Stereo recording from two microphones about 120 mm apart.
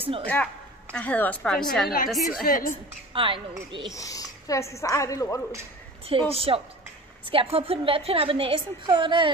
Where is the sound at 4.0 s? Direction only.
30° left (ahead or behind).